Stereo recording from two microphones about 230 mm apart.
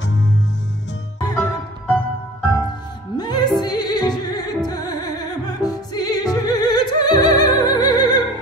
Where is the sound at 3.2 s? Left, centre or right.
Centre.